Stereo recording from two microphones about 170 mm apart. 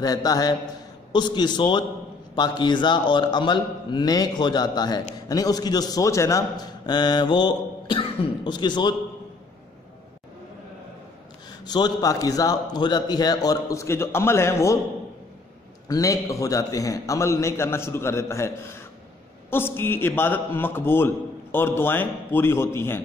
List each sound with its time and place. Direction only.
0.0 s a man's voice: 20° left (ahead or behind)
11.6 s a man's voice: 25° left (ahead or behind)
15.9 s a man's voice: 20° left (ahead or behind)